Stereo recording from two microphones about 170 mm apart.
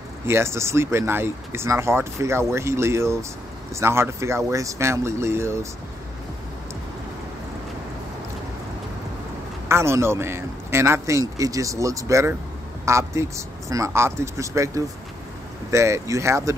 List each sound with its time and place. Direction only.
0.3 s a man's voice: 15° right (ahead or behind)
9.7 s a man's voice: 15° right (ahead or behind)